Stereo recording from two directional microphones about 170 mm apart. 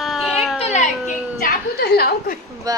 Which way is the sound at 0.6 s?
40° left (ahead or behind).